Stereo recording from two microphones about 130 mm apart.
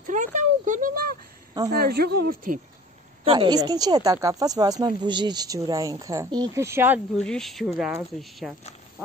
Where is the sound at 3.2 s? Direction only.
35° right (ahead or behind); by 6.9 s 20° right (ahead or behind).